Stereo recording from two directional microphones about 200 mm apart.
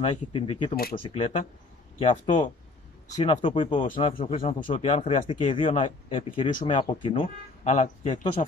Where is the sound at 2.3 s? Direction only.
40° left (ahead or behind).